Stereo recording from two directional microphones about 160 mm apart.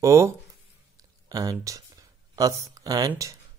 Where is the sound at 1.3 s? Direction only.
20° right (ahead or behind).